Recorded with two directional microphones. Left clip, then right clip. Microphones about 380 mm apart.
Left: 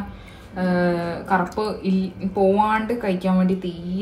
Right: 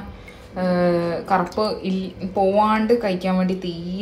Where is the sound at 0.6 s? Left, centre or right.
Centre.